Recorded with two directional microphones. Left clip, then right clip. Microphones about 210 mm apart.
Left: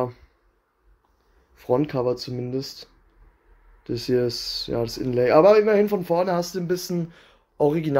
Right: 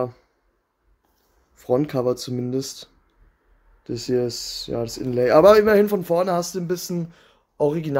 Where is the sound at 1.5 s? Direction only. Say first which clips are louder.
Right 1 dB; 10° right (ahead or behind).